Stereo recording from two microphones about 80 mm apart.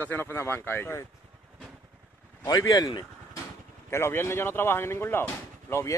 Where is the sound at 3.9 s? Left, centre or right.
Left.